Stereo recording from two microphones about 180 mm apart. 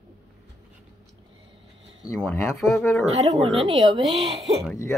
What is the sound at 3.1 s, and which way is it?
Speech, 35° right (ahead or behind).